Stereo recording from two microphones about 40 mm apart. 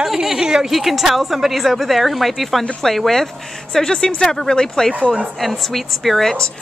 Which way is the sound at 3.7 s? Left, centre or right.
Centre.